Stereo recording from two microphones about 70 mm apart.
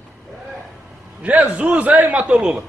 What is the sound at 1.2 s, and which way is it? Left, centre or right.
A man's voice, right.